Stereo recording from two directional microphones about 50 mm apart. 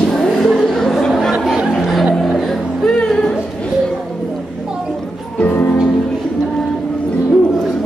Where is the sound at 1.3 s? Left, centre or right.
Centre.